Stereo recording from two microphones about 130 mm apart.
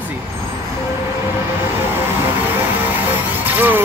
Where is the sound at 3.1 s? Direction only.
15° right (ahead or behind).